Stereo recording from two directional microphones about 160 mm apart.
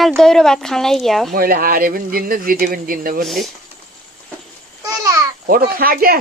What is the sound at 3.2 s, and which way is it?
Speech, centre (ahead or behind).